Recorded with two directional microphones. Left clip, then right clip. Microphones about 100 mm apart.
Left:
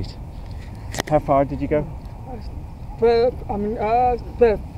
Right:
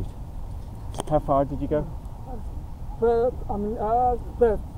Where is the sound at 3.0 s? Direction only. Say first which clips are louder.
Left 5 dB; 45° left (ahead or behind).